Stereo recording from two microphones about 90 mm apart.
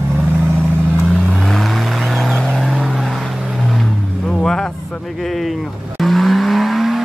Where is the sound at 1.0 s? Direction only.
5° left (ahead or behind).